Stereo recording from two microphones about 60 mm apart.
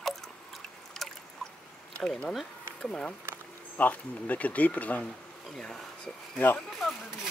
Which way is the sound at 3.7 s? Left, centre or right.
Left.